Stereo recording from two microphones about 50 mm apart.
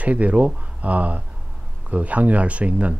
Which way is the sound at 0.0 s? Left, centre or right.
Right.